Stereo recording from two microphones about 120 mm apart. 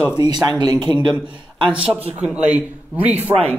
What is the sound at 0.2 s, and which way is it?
Speech, 35° right (ahead or behind).